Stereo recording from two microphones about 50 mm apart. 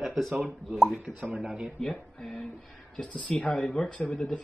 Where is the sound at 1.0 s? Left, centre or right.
Right.